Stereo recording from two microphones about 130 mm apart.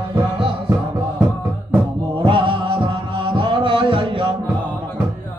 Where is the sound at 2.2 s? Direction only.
40° right (ahead or behind).